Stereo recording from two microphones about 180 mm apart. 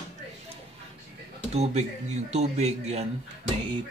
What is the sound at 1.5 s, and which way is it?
Speech, 40° right (ahead or behind).